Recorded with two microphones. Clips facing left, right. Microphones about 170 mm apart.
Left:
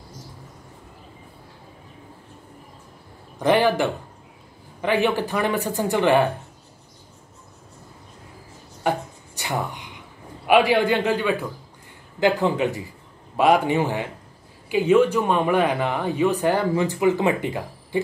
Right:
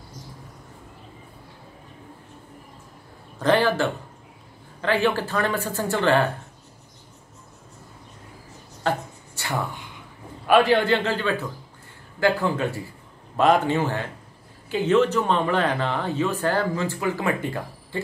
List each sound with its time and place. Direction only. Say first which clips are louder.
3.3 s speech: left 2 dB; 15° left (ahead or behind)
8.8 s a sound: left 2 dB; 15° left (ahead or behind)
10.4 s speech: left 1 dB; 10° left (ahead or behind)